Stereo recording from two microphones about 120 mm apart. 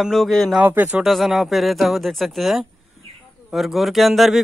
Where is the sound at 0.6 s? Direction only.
15° right (ahead or behind).